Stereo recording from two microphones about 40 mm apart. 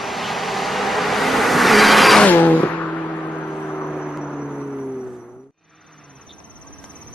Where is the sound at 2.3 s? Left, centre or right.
Left.